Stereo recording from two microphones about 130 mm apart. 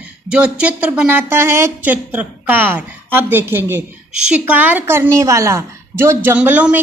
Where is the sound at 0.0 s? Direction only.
10° right (ahead or behind).